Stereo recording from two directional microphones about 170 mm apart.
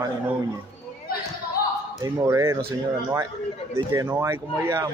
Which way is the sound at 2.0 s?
20° right (ahead or behind).